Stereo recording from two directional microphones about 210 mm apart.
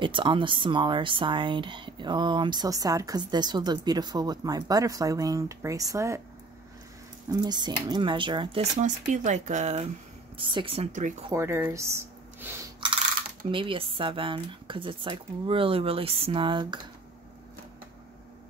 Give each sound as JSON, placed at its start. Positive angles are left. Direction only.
{"t": 0.0, "sound": "speech", "side_deg": -25}
{"t": 7.2, "sound": "speech", "side_deg": -20}
{"t": 11.3, "sound": "speech", "side_deg": -10}
{"t": 13.5, "sound": "speech", "side_deg": -25}